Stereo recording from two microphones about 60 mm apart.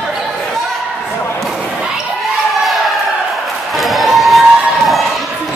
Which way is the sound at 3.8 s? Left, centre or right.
Centre.